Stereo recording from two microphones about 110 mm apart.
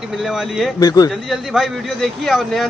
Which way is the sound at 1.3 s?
Centre (ahead or behind).